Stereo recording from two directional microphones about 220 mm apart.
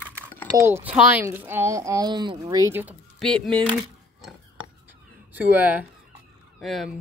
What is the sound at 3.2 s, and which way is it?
Speech, 5° left (ahead or behind).